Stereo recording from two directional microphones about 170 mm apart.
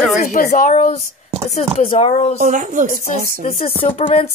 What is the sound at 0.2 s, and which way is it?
A woman's voice, 50° left (ahead or behind).